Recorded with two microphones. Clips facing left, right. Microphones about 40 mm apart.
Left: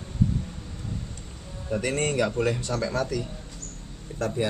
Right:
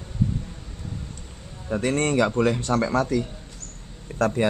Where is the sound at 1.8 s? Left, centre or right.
Right.